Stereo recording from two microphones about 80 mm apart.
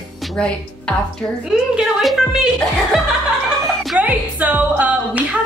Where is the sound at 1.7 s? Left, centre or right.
Centre.